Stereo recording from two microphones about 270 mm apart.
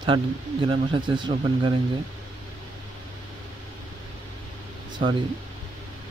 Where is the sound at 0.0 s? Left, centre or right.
Centre.